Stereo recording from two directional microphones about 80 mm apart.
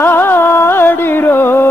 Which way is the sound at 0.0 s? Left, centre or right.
Left.